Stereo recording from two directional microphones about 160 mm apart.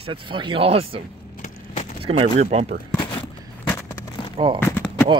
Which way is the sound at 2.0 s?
40° right (ahead or behind).